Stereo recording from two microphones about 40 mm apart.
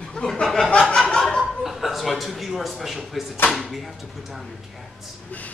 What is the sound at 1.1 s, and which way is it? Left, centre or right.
Chuckle, centre.